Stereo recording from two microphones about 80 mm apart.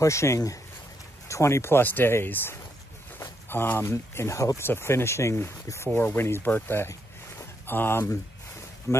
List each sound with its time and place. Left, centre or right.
0.0 s speech: left
6.5 s a sound: left
7.7 s speech: left
8.9 s speech: left